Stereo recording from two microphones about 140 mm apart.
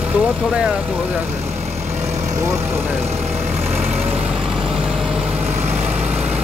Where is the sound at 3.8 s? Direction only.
50° right (ahead or behind).